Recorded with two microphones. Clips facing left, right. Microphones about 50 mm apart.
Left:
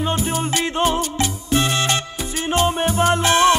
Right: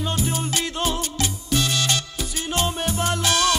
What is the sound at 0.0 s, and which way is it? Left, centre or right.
Music, left.